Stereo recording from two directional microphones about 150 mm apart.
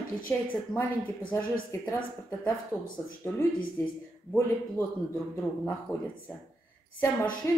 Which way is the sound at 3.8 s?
15° left (ahead or behind).